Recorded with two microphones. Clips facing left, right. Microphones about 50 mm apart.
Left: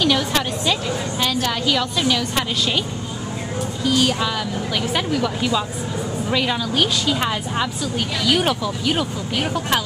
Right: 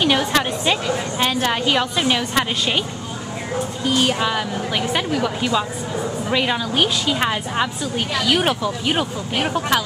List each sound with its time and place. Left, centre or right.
0.0 s a woman's voice: right
3.8 s speech: right
4.9 s a woman's voice: centre